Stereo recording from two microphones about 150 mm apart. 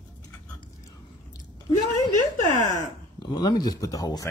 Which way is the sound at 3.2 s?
30° left (ahead or behind).